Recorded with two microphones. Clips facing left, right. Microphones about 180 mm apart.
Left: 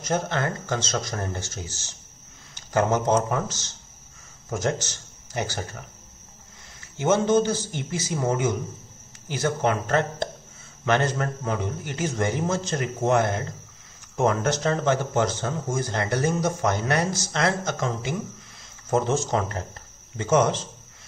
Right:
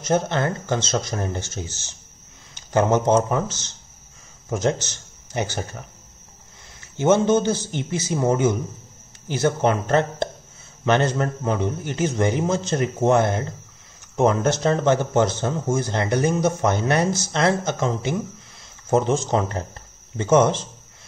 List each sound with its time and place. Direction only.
0.0 s speech: 25° right (ahead or behind)
7.0 s speech: 25° right (ahead or behind)